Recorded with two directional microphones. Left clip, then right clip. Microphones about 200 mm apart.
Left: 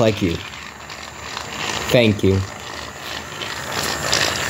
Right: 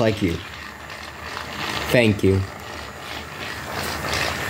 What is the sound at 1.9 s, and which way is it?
Speech, 10° left (ahead or behind).